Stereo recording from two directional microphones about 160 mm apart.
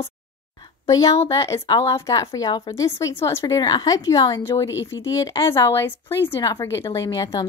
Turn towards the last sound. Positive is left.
turn(degrees=20)  # may be behind; listen again after turning